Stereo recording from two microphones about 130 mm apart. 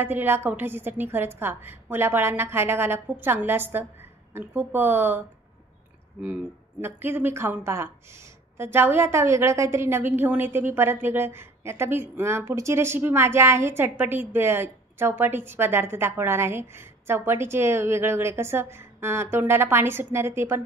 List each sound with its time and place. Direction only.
0.0 s a woman's voice: 15° right (ahead or behind)
6.8 s a woman's voice: 15° right (ahead or behind)